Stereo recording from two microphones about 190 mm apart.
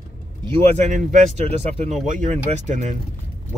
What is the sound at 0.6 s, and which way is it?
Speech, 40° right (ahead or behind).